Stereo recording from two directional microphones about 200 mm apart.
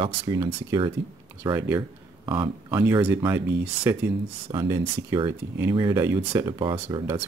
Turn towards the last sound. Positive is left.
turn(degrees=-25)  # may be behind; listen again after turning